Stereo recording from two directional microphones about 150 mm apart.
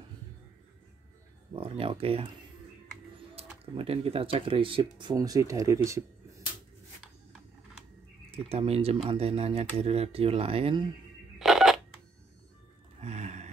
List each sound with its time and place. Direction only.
1.5 s speech: 35° right (ahead or behind)
3.7 s speech: 40° right (ahead or behind); by 6.4 s 20° right (ahead or behind)
8.3 s speech: 40° right (ahead or behind)
11.3 s telephone dialing: centre (ahead or behind)
13.0 s a sound: 50° right (ahead or behind)